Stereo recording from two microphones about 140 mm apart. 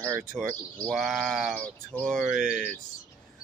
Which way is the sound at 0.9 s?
Centre (ahead or behind).